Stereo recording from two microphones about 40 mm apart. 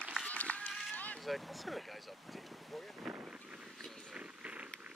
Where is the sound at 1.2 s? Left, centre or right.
Centre.